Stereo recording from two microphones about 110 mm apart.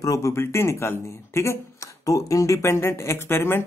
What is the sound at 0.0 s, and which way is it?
Speech, 30° left (ahead or behind).